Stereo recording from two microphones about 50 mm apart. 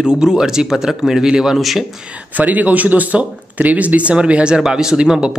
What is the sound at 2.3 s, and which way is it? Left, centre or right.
Speech, right.